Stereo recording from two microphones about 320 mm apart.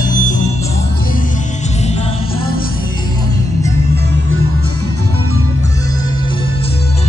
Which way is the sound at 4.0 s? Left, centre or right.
Right.